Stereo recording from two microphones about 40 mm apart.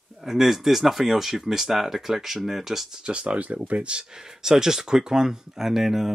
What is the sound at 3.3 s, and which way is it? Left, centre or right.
Speech, right.